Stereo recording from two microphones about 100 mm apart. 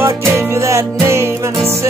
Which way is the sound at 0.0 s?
25° right (ahead or behind).